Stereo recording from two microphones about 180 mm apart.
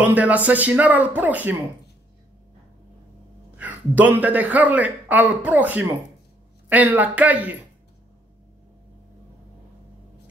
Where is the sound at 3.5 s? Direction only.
10° right (ahead or behind).